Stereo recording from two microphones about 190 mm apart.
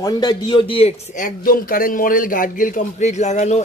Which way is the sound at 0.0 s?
20° left (ahead or behind).